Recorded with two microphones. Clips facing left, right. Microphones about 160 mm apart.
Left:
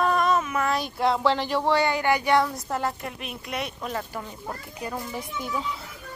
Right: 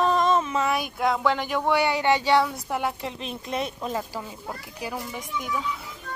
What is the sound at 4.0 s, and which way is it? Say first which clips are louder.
A child's voice: right 1 dB; 10° right (ahead or behind).